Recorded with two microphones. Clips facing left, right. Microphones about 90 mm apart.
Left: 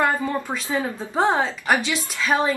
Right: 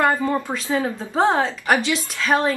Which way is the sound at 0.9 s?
Centre (ahead or behind).